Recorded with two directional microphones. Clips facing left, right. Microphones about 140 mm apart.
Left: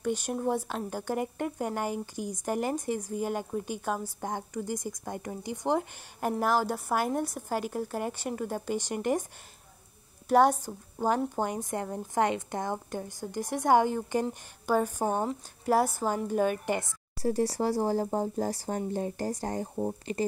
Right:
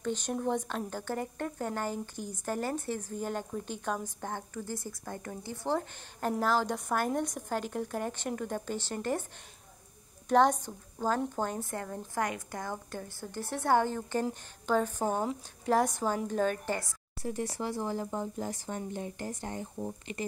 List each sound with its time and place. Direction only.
0.0 s speech: 10° left (ahead or behind)
10.2 s a woman's voice: 10° left (ahead or behind)
17.2 s speech: 35° left (ahead or behind)